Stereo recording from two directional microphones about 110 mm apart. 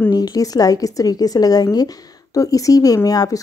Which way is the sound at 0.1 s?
35° left (ahead or behind).